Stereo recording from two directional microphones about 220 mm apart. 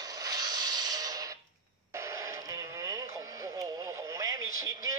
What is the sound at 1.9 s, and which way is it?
Radio, 15° right (ahead or behind).